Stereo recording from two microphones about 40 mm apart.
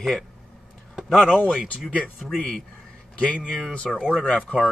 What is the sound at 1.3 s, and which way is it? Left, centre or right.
Speech, centre.